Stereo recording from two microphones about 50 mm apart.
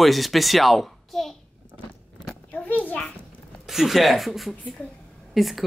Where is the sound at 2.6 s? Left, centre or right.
Left.